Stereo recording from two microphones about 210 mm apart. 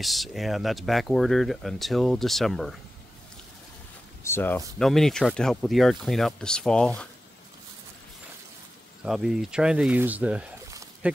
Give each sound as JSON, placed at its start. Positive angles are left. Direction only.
{"t": 0.0, "sound": "speech", "side_deg": 0}
{"t": 4.2, "sound": "speech", "side_deg": 10}
{"t": 9.0, "sound": "speech", "side_deg": 0}